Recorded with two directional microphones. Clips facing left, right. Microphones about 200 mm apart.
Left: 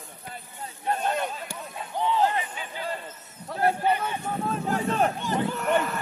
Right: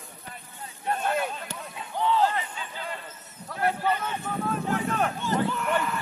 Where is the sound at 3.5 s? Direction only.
30° left (ahead or behind).